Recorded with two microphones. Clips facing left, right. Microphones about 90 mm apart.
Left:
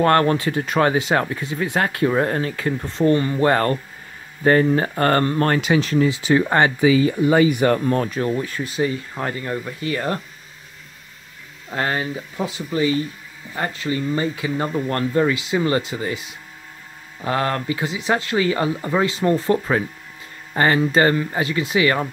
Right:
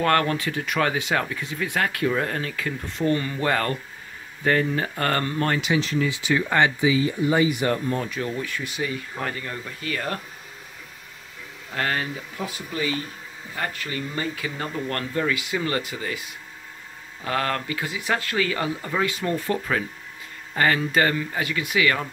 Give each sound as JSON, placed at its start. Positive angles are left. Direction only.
{"t": 0.0, "sound": "speech", "side_deg": 35}
{"t": 5.9, "sound": "speech", "side_deg": 35}
{"t": 6.8, "sound": "speech", "side_deg": 60}
{"t": 8.1, "sound": "speech", "side_deg": 40}
{"t": 11.7, "sound": "speech", "side_deg": 25}